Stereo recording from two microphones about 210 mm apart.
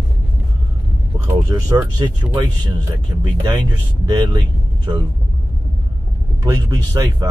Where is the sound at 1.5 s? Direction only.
15° right (ahead or behind).